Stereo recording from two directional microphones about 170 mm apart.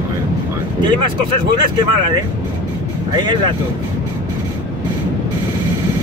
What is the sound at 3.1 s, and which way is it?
Speech, 25° right (ahead or behind).